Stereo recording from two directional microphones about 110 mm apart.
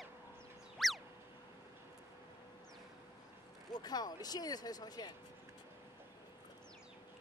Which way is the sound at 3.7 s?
35° left (ahead or behind).